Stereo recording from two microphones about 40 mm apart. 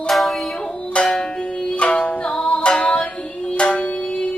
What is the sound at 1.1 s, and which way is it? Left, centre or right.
Music, left.